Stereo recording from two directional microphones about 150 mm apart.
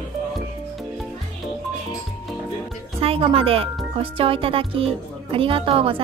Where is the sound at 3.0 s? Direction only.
40° right (ahead or behind).